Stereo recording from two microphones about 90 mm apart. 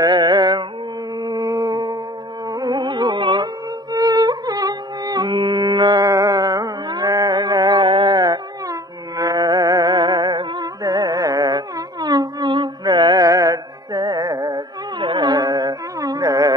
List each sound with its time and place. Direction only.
0.0 s carnatic music: 50° right (ahead or behind)
1.2 s a sound: 45° right (ahead or behind)
2.5 s music: 50° right (ahead or behind)
3.9 s music: 45° right (ahead or behind)
6.0 s carnatic music: 40° right (ahead or behind)